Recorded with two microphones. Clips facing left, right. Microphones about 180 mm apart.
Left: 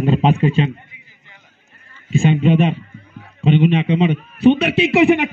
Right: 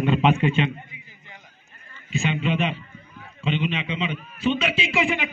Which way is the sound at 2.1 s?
50° left (ahead or behind).